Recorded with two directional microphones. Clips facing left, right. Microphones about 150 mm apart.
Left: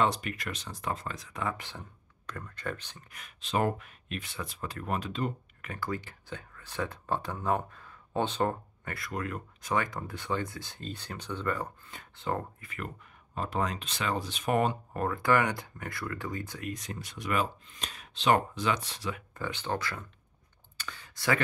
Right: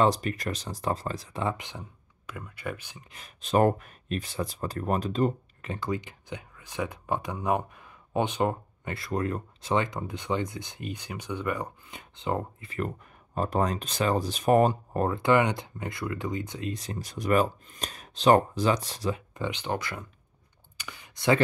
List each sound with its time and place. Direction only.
0.0 s speech: 35° right (ahead or behind)
1.5 s speech: 15° right (ahead or behind)
3.1 s speech: 30° right (ahead or behind)
3.3 s speech: 45° right (ahead or behind)
5.7 s speech: 20° right (ahead or behind)
8.9 s speech: 30° right (ahead or behind)
12.6 s speech: 40° right (ahead or behind)
15.0 s speech: 25° right (ahead or behind); by 19.1 s 40° right (ahead or behind)
19.1 s speech: 20° right (ahead or behind)
20.7 s clicking: 15° right (ahead or behind)